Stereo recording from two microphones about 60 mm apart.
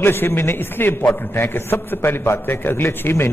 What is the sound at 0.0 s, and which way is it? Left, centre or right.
A man's voice, left.